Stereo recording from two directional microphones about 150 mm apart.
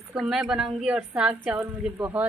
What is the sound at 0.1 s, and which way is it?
A woman's voice, 5° right (ahead or behind).